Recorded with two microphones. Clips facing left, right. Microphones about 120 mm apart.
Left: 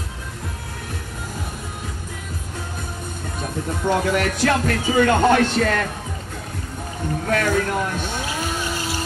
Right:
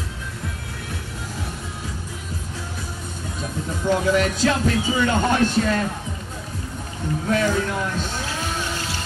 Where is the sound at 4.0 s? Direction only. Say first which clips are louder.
Right 1 dB; 55° left (ahead or behind).